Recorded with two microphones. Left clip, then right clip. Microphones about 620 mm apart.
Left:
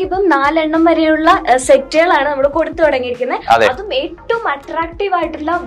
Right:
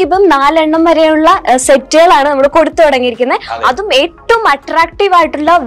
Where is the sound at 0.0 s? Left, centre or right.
Right.